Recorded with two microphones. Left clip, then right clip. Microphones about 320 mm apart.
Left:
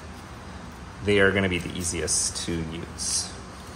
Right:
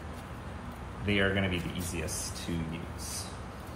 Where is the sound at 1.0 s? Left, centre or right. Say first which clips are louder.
Left 8 dB; centre.